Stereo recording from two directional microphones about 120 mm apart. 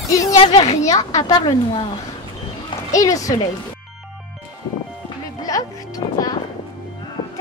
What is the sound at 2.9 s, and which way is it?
Speech, 30° left (ahead or behind).